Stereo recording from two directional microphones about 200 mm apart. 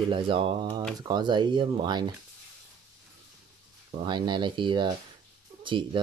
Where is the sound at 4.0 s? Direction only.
20° right (ahead or behind).